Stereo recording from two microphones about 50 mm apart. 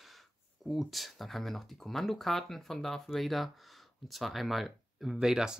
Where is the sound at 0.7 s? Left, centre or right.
Centre.